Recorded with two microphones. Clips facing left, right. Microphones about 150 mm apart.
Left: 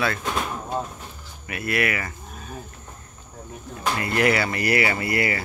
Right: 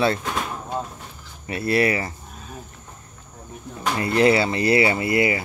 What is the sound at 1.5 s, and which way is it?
Speech, 30° right (ahead or behind).